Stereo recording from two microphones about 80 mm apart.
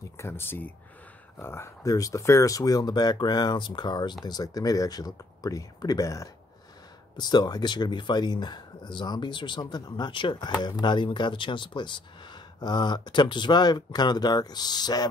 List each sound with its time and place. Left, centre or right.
0.2 s speech: left
1.9 s speech: left
4.2 s speech: left
7.2 s speech: left
10.6 s speech: left